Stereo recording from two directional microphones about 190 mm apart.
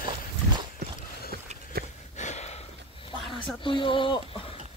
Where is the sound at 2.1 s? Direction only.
35° left (ahead or behind).